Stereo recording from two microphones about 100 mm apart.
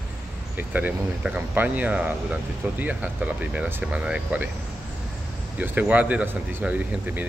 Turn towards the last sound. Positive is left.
turn(degrees=-15)  # may be behind; listen again after turning